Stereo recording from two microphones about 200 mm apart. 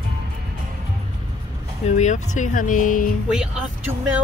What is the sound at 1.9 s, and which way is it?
Speech, 35° left (ahead or behind).